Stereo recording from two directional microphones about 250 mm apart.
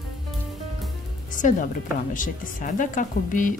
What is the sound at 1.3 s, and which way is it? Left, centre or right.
A woman's voice, left.